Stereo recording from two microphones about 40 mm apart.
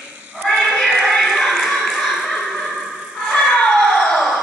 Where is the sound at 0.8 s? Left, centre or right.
Centre.